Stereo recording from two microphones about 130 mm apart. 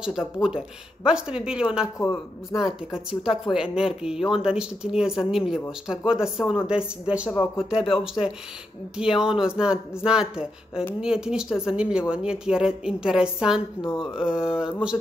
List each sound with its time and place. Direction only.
0.0 s speech: 5° right (ahead or behind)